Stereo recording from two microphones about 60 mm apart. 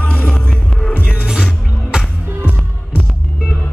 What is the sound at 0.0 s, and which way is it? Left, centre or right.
Music, left.